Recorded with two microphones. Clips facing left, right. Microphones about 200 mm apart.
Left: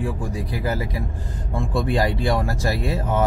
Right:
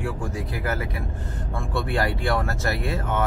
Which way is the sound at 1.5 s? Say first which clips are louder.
Left 4 dB; 20° left (ahead or behind).